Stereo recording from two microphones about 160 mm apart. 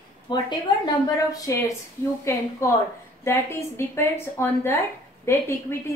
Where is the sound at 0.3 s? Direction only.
30° left (ahead or behind).